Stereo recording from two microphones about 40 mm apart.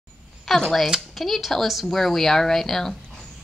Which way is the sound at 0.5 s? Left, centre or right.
Centre.